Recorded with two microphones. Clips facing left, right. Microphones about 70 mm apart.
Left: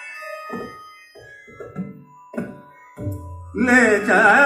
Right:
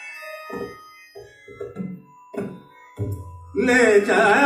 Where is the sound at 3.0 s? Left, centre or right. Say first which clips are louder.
Left 2 dB; left.